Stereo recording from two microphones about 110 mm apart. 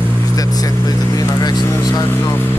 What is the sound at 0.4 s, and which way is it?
Speech, 35° left (ahead or behind).